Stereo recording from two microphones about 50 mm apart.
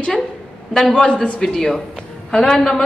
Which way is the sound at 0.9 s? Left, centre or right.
Centre.